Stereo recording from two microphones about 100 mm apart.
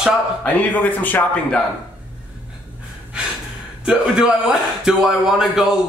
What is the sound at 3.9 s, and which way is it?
A man's voice, 5° right (ahead or behind).